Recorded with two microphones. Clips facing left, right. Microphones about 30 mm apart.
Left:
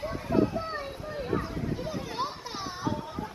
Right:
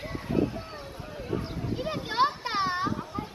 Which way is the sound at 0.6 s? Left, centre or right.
Left.